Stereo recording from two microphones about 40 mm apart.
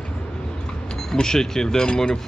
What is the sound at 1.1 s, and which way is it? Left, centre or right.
Speech, centre.